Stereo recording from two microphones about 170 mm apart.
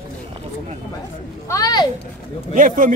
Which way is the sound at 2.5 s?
50° right (ahead or behind).